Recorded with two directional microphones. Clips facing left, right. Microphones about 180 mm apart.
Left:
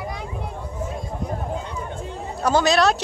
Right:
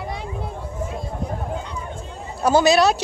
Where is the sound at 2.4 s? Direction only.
10° right (ahead or behind).